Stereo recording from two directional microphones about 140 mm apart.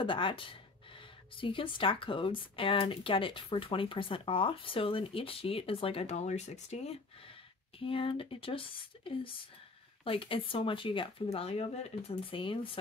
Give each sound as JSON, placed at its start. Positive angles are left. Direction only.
{"t": 0.0, "sound": "speech", "side_deg": 35}
{"t": 7.8, "sound": "speech", "side_deg": 40}